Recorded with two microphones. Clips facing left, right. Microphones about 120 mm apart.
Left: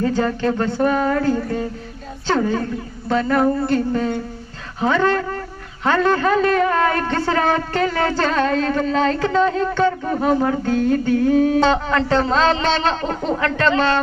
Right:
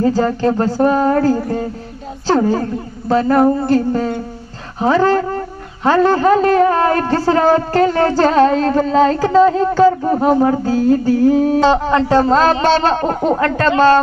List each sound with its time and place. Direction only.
0.0 s a man's voice: 35° right (ahead or behind)